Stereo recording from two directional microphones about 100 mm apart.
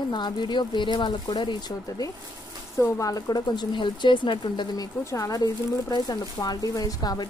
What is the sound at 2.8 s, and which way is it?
Speech, 35° left (ahead or behind).